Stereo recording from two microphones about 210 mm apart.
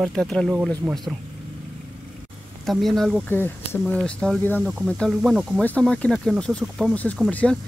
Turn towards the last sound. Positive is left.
turn(degrees=5)  # may be behind; listen again after turning